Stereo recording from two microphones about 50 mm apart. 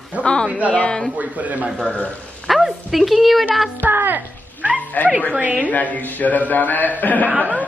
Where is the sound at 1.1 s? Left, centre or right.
Right.